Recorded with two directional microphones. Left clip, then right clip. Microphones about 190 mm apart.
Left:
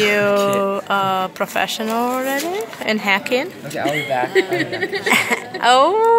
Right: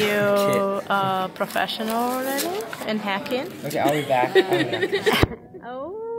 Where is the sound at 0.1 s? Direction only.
Centre (ahead or behind).